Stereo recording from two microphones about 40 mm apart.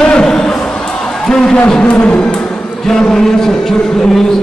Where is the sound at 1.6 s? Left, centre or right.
Left.